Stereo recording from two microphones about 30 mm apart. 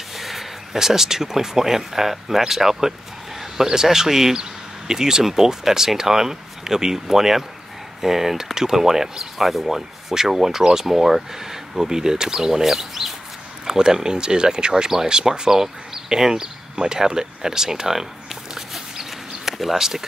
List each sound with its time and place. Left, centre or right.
0.1 s a sound: centre
0.7 s speech: centre
13.7 s speech: right
14.7 s speech: centre
18.5 s dog: centre
19.6 s speech: centre